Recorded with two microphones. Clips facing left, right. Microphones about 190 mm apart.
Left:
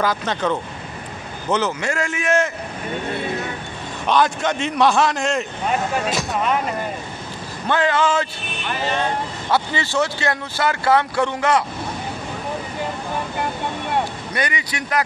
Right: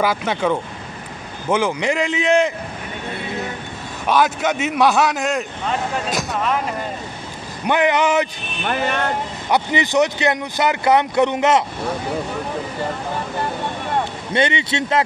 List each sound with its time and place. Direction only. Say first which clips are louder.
0.0 s a man's voice: right 2 dB; 10° right (ahead or behind)
4.1 s a man's voice: right 1 dB; 5° right (ahead or behind)
7.6 s speech: right 2 dB; 15° right (ahead or behind)
8.6 s speech: right 2 dB; 60° right (ahead or behind)
9.5 s speech: right 3 dB; 20° right (ahead or behind)
14.3 s speech: right 8 dB; 25° right (ahead or behind)